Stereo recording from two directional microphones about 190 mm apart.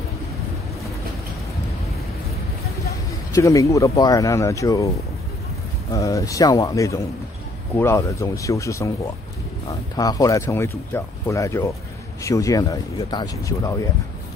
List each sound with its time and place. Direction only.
3.3 s speech: 15° left (ahead or behind)
5.9 s speech: 15° left (ahead or behind)